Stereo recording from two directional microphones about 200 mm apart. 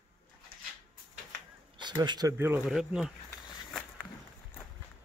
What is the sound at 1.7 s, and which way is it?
Speech, 20° right (ahead or behind).